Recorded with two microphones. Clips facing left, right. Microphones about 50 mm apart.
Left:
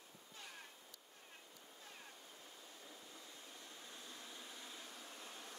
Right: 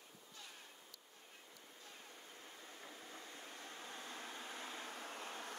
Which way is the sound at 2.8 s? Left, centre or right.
Right.